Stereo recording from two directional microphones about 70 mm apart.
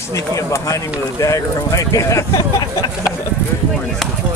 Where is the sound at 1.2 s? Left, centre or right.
Left.